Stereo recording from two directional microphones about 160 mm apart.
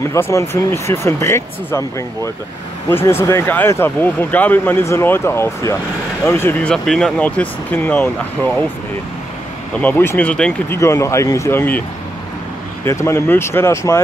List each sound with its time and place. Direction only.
0.0 s speech: 20° left (ahead or behind)
6.7 s speech: 5° left (ahead or behind)
9.8 s speech: 10° left (ahead or behind)
10.8 s speech: 20° left (ahead or behind)
12.8 s speech: 15° left (ahead or behind)